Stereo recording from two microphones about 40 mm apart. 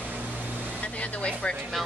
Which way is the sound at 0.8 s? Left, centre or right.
Left.